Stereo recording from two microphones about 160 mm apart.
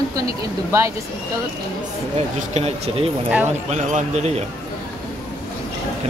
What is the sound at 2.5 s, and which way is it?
Speech, 40° right (ahead or behind).